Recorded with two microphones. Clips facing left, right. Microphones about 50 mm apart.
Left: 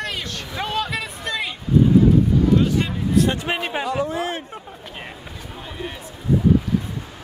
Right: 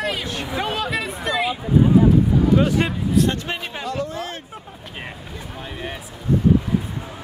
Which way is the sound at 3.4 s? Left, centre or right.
Left.